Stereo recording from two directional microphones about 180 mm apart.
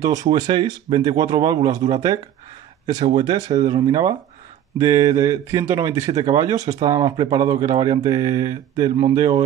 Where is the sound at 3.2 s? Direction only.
25° right (ahead or behind).